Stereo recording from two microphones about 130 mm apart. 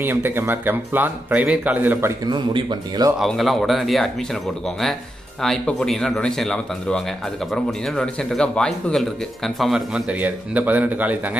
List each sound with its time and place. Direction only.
0.0 s speech: 15° right (ahead or behind)
2.2 s speech: 35° right (ahead or behind)
3.2 s a man's voice: centre (ahead or behind)